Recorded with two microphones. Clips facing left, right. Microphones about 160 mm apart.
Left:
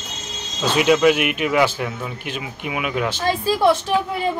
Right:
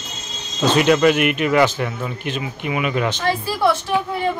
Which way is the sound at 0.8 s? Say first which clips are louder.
Even; 5° left (ahead or behind).